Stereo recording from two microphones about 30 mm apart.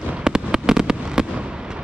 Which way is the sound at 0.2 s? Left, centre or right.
Right.